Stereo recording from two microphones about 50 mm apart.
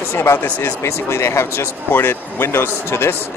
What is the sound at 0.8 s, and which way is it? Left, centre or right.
Speech, left.